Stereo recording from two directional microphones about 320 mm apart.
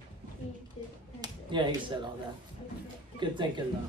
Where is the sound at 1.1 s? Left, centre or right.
Centre.